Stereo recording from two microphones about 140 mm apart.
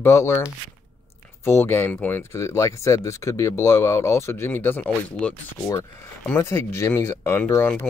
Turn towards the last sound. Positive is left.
turn(degrees=15)  # may be behind; listen again after turning